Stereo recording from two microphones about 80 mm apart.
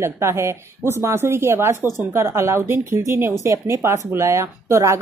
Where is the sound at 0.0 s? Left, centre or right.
Right.